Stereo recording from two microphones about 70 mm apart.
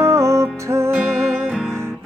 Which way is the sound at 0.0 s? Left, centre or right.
Right.